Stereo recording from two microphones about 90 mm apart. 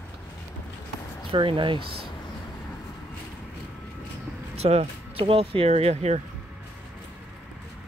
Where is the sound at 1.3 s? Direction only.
70° right (ahead or behind).